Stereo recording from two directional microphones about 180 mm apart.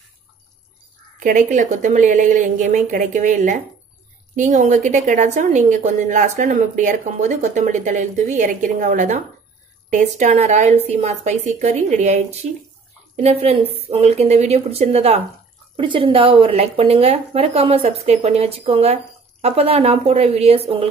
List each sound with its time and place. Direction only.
1.2 s a woman's voice: 45° right (ahead or behind)